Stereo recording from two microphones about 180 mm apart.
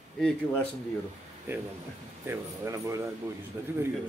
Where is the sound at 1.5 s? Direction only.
10° right (ahead or behind).